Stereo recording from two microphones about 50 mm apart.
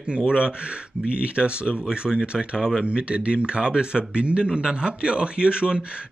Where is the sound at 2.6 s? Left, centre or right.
Centre.